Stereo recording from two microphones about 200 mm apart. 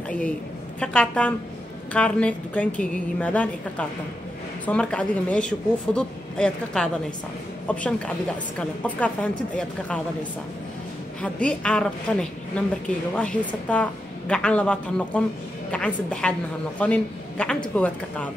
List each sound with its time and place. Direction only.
0.7 s a woman's voice: 5° left (ahead or behind)
11.1 s a woman's voice: 5° left (ahead or behind)